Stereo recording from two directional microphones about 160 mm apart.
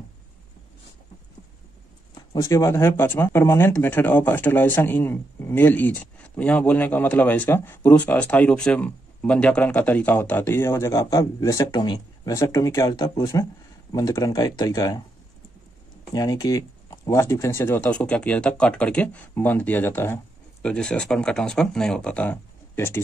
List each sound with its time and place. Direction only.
2.3 s speech: 20° left (ahead or behind)
16.1 s speech: 25° left (ahead or behind)